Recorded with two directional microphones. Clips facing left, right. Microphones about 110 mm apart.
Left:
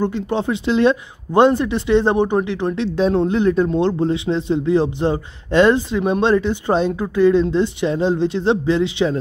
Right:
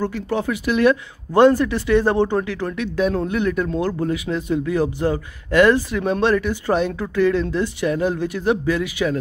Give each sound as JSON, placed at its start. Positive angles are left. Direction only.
{"t": 0.0, "sound": "speech", "side_deg": 20}